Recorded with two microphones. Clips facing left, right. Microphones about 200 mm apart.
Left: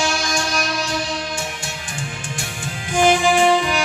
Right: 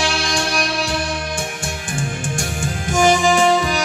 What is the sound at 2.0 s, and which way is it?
Music, 45° right (ahead or behind).